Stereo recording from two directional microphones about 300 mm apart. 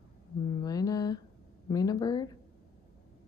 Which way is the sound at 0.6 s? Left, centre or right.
Centre.